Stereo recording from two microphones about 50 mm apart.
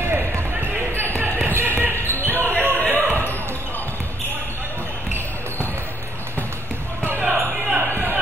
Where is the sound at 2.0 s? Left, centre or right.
Left.